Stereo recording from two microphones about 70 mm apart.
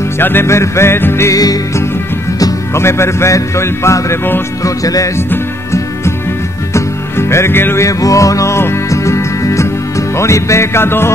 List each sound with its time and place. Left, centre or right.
0.2 s speech: left
1.3 s music: left
2.7 s speech: left
4.6 s music: left
5.1 s music: left
7.8 s music: left